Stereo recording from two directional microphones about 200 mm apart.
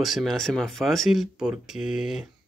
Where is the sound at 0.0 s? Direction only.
Centre (ahead or behind).